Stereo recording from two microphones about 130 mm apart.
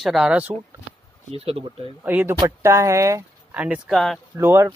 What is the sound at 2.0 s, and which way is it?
Speech, 15° right (ahead or behind).